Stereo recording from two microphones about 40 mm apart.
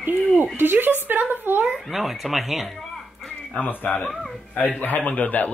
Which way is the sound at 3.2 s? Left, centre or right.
Left.